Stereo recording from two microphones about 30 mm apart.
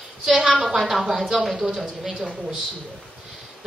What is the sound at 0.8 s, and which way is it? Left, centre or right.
A woman's voice, centre.